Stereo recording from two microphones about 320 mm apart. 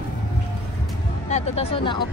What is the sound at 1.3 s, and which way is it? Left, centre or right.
Speech, centre.